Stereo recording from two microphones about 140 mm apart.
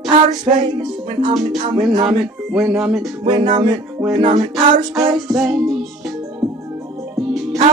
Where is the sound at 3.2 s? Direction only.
30° right (ahead or behind).